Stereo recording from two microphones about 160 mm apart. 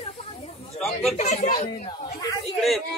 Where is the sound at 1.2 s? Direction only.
50° left (ahead or behind).